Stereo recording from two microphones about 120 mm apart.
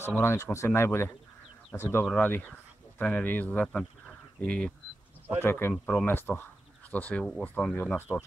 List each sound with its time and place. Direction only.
0.0 s speech: 20° left (ahead or behind)
2.0 s speech: 15° left (ahead or behind)